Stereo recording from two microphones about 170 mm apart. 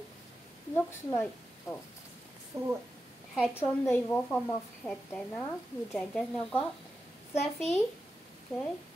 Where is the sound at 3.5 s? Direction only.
15° left (ahead or behind).